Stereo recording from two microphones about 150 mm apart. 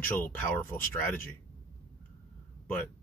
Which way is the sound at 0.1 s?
10° left (ahead or behind).